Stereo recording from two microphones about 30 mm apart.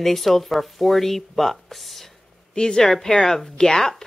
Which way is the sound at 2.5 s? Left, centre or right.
Left.